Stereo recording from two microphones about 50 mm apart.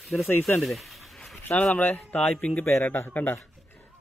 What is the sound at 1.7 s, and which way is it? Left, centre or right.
A man's voice, left.